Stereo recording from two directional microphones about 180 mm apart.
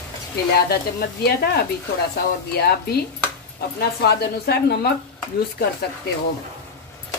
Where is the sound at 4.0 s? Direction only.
65° left (ahead or behind).